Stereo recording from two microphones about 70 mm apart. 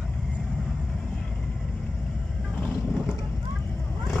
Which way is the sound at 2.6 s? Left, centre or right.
Centre.